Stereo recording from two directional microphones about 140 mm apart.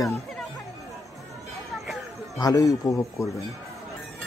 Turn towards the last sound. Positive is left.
turn(degrees=20)  # may be behind; listen again after turning